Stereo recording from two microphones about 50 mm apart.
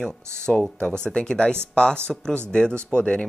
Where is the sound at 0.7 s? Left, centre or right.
Centre.